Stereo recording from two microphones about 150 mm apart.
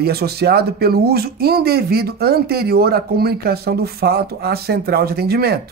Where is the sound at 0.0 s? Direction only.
90° right.